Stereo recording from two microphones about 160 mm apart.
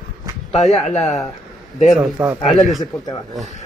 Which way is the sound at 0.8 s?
45° left (ahead or behind).